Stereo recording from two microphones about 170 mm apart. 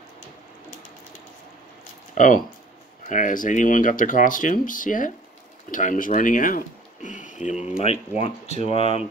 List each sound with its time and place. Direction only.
2.1 s speech: 50° left (ahead or behind)